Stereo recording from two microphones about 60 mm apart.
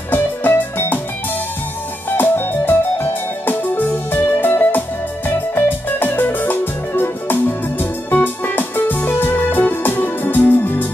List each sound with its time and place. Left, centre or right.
0.1 s music: left
2.0 s music: left